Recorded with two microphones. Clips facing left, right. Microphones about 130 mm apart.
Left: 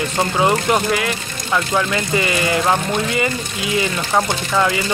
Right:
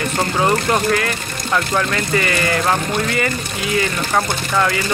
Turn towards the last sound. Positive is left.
turn(degrees=15)  # may be behind; listen again after turning